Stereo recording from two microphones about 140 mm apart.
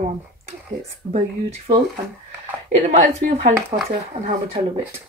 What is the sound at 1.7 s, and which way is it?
Speech, 35° right (ahead or behind).